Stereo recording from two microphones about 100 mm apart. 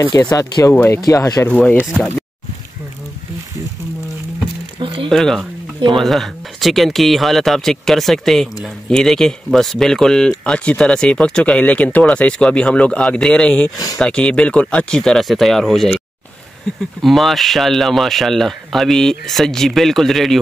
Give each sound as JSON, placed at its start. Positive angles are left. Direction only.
{"t": 0.1, "sound": "speech", "side_deg": 40}
{"t": 1.5, "sound": "speech", "side_deg": 15}
{"t": 4.7, "sound": "a sound", "side_deg": -60}
{"t": 5.1, "sound": "speech", "side_deg": 5}
{"t": 17.0, "sound": "speech", "side_deg": 0}